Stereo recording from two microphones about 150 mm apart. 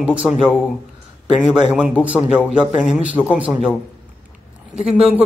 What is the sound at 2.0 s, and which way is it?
A man's voice, 10° right (ahead or behind).